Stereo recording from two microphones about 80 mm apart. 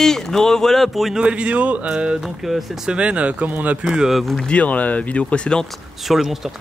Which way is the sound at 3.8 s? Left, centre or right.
Centre.